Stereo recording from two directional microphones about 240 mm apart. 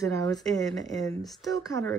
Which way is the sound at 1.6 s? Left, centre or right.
Centre.